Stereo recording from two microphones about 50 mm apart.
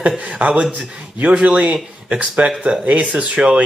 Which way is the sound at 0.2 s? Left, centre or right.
Right.